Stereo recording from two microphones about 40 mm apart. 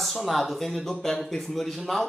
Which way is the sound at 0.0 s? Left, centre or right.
Centre.